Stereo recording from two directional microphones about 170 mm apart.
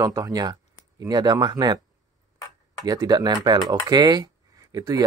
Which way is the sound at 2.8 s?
20° right (ahead or behind).